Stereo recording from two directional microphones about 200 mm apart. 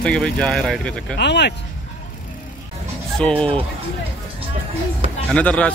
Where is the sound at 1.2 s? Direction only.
55° left (ahead or behind).